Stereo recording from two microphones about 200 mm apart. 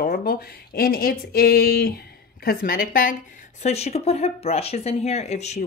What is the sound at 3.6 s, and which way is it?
Speech, 30° left (ahead or behind).